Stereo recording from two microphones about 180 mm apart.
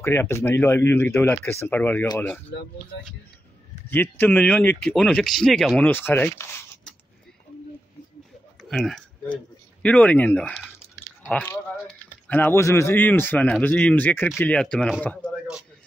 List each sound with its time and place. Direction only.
0.0 s speech: 15° left (ahead or behind)
2.9 s speech: 70° left (ahead or behind)
3.9 s speech: 10° left (ahead or behind)
8.6 s speech: centre (ahead or behind)